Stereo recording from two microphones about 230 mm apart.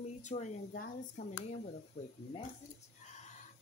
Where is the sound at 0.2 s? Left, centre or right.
Left.